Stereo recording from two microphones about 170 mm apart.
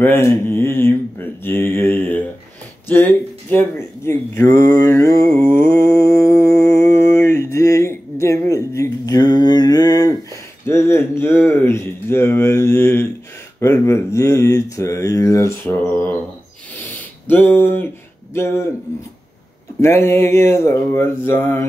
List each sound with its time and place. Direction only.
0.0 s speech: 15° left (ahead or behind)
5.7 s mantra: 20° left (ahead or behind)
7.2 s a sound: 15° left (ahead or behind)
13.6 s speech: 15° left (ahead or behind)
16.8 s a sound: 10° left (ahead or behind)
19.8 s speech: 15° left (ahead or behind)